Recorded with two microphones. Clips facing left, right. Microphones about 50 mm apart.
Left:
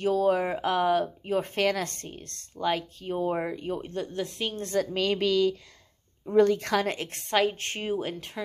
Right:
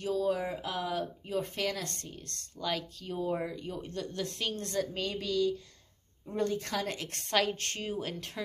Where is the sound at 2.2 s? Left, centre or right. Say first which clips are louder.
Left 8 dB; left.